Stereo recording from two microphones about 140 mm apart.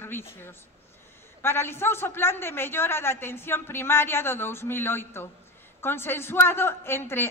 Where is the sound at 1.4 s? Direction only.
15° left (ahead or behind).